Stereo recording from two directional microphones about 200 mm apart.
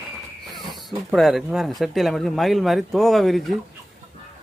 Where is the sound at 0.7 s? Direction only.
Centre (ahead or behind).